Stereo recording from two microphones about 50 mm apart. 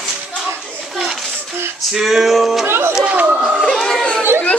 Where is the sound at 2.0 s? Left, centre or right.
Centre.